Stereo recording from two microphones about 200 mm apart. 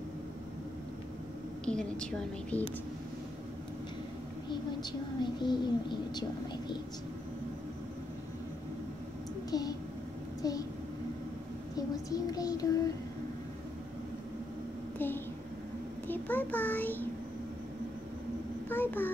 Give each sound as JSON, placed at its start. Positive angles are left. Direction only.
{"t": 1.7, "sound": "a woman's voice", "side_deg": 5}
{"t": 5.2, "sound": "a child's voice", "side_deg": 20}
{"t": 9.5, "sound": "a child's voice", "side_deg": 20}
{"t": 12.1, "sound": "a child's voice", "side_deg": 20}
{"t": 15.0, "sound": "a sound", "side_deg": 10}
{"t": 16.1, "sound": "a child's voice", "side_deg": 10}
{"t": 18.7, "sound": "a child's voice", "side_deg": 10}